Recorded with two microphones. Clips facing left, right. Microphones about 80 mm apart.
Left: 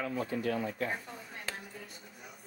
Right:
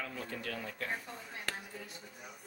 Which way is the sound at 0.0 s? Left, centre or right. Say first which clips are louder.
Left 8 dB; centre.